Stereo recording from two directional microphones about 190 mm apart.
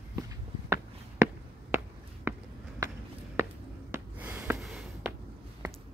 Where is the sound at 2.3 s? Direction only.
15° right (ahead or behind).